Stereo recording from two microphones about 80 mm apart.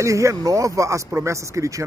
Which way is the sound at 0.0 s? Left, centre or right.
Right.